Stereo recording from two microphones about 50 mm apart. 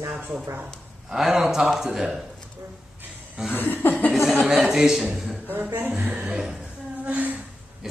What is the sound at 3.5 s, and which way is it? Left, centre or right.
Chuckle, left.